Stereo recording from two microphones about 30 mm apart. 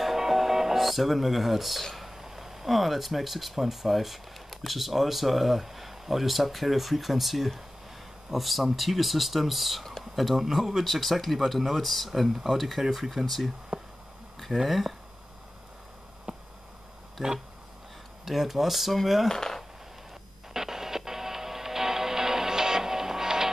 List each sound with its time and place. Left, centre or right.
0.0 s music: centre
2.2 s speech: centre
10.8 s speech: centre
13.7 s a sound: right
14.7 s speech: centre
16.3 s a sound: right
17.2 s speech: centre
19.2 s speech: centre
20.5 s music: centre